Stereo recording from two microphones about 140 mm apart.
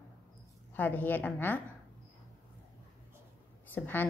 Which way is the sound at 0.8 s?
10° left (ahead or behind).